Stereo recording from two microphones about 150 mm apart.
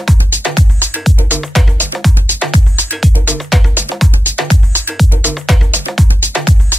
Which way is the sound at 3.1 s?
10° right (ahead or behind).